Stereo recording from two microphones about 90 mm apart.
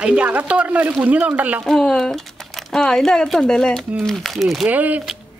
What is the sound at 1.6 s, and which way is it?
Speech, 5° left (ahead or behind).